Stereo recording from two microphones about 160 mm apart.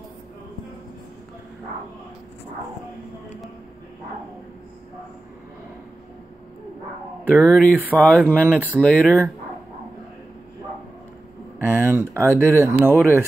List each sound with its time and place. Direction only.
7.4 s speech: 5° left (ahead or behind)
7.7 s speech: 10° right (ahead or behind)
11.7 s a sound: 15° right (ahead or behind)
12.1 s speech: 15° right (ahead or behind)